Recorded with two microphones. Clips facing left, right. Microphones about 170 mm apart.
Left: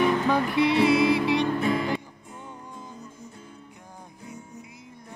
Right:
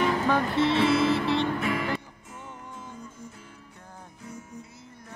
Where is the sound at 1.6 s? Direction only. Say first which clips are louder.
Left 3 dB; 30° left (ahead or behind).